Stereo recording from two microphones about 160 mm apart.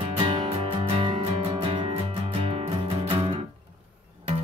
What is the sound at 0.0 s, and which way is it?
Music, 35° right (ahead or behind).